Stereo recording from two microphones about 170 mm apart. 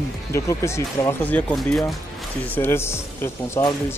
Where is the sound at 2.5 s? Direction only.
15° left (ahead or behind).